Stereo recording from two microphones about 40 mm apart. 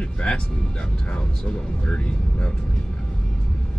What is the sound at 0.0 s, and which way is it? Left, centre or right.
Vehicle, left.